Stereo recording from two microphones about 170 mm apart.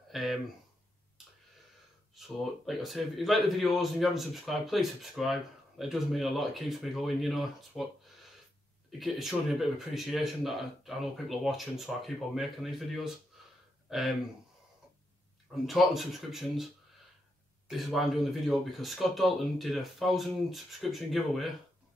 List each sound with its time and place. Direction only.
0.1 s a sound: centre (ahead or behind)
2.1 s speech: centre (ahead or behind)
15.6 s speech: centre (ahead or behind)